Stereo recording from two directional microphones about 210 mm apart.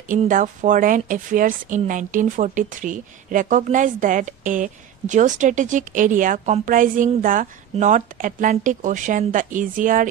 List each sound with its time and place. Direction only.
0.1 s speech: 40° right (ahead or behind)